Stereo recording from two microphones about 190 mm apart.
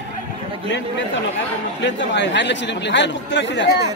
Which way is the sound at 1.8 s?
65° left (ahead or behind).